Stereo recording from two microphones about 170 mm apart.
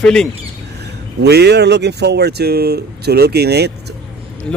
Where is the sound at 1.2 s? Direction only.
80° right.